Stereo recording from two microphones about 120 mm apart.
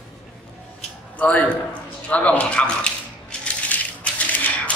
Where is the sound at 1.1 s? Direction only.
15° left (ahead or behind).